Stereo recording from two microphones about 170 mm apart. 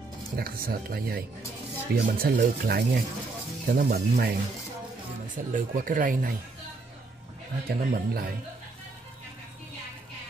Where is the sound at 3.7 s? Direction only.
60° right (ahead or behind).